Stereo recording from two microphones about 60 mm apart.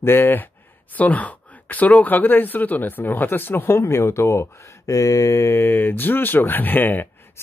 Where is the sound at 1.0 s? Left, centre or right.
Left.